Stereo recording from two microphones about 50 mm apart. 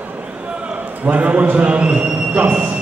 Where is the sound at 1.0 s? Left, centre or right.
Right.